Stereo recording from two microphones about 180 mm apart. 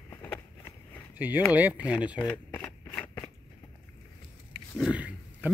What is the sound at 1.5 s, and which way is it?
Speech, 10° right (ahead or behind).